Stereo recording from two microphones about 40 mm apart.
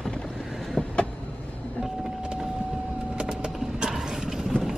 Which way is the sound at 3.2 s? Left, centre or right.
Right.